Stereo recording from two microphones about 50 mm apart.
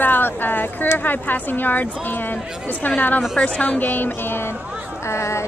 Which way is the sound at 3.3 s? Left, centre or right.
Centre.